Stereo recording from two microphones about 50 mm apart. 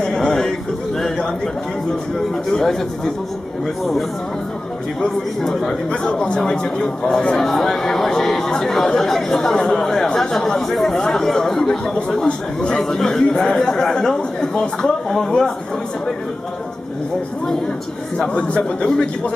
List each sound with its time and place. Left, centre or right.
0.0 s a sound: centre
0.9 s bird: centre
2.5 s speech: centre
5.4 s speech: centre
6.2 s speech: centre
18.1 s a man's voice: left